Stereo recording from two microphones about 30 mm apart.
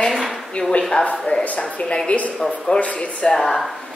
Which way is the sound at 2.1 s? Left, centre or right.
Left.